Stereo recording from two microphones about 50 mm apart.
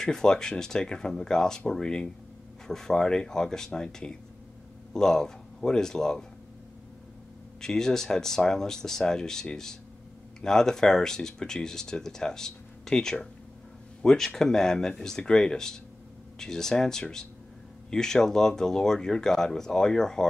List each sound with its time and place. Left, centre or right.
0.0 s speech: centre
7.6 s speech: centre